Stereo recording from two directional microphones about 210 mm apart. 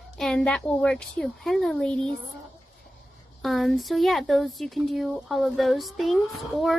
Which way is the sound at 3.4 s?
Centre (ahead or behind).